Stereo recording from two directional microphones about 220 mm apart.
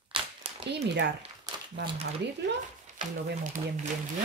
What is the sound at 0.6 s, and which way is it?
Speech, 50° right (ahead or behind).